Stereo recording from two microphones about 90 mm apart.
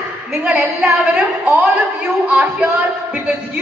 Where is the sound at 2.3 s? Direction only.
20° right (ahead or behind).